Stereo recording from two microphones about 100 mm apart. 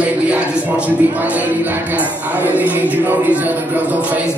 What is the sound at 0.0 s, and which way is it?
Speech, 15° right (ahead or behind).